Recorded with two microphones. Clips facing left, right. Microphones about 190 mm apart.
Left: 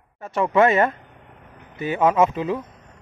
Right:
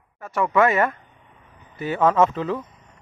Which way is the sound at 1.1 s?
70° left (ahead or behind).